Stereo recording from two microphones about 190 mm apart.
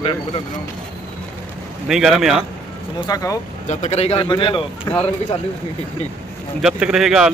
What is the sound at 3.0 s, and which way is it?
Speech, 20° left (ahead or behind).